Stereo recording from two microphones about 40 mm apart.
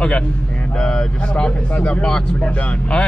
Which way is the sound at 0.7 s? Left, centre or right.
Left.